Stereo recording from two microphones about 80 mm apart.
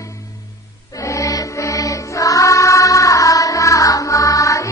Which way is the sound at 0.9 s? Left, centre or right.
Left.